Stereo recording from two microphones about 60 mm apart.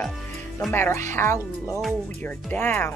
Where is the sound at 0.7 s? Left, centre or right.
Left.